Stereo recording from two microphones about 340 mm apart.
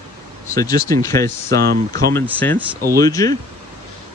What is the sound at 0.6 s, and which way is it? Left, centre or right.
Speech, centre.